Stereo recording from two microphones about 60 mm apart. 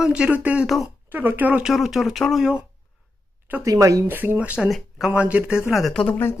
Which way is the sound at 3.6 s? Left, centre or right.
Right.